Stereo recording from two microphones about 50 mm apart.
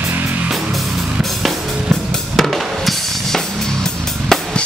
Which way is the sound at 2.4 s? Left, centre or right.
Centre.